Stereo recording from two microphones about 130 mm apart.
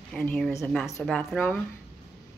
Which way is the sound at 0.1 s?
15° left (ahead or behind).